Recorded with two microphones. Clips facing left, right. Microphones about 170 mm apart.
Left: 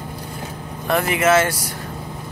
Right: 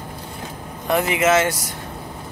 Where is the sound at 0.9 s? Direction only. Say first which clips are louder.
Left 1 dB; 20° right (ahead or behind).